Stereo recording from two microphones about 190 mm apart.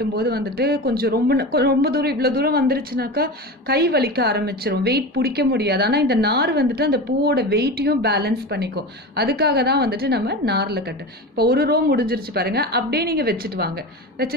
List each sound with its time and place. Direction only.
0.0 s speech: 55° right (ahead or behind)